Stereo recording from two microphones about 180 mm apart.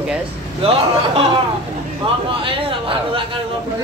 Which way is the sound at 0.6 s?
30° right (ahead or behind).